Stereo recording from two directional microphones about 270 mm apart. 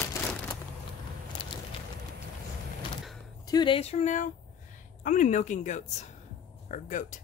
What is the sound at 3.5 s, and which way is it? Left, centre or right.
A woman's voice, centre.